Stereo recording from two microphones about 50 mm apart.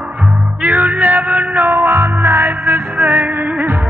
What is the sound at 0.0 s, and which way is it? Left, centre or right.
Music, right.